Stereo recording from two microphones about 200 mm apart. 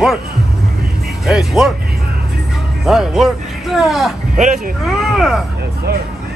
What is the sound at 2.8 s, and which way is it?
A man's voice, centre (ahead or behind).